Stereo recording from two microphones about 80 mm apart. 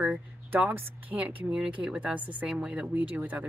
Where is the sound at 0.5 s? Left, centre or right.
Right.